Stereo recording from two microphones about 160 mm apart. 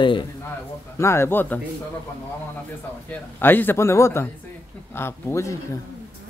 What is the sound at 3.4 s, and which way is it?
Speech, 15° left (ahead or behind).